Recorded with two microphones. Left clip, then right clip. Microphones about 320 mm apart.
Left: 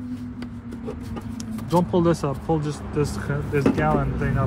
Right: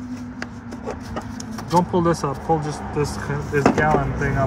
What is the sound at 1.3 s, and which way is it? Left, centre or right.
Speech, centre.